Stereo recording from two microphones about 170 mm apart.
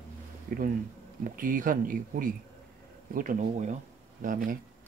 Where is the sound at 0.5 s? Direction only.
55° right (ahead or behind).